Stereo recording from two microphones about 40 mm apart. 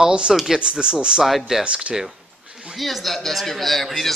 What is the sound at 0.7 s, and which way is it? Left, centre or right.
Speech, right.